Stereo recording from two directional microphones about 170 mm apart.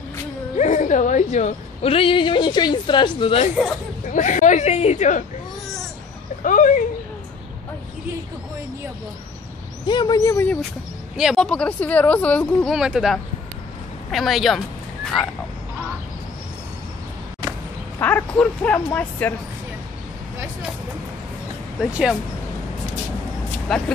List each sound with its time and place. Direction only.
0.6 s a woman's voice: 45° left (ahead or behind)
4.1 s a woman's voice: 45° left (ahead or behind)
6.4 s a woman's voice: 50° left (ahead or behind)
9.8 s speech: 25° left (ahead or behind)
11.1 s speech: centre (ahead or behind)
12.7 s speech: 5° right (ahead or behind)
17.9 s speech: 10° left (ahead or behind)
23.7 s speech: centre (ahead or behind)